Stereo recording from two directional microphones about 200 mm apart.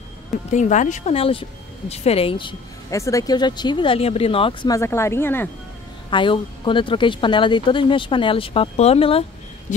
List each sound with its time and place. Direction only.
0.5 s speech: 35° left (ahead or behind); by 5.5 s 10° left (ahead or behind)
6.0 s speech: 25° left (ahead or behind)
9.7 s a sound: 40° left (ahead or behind)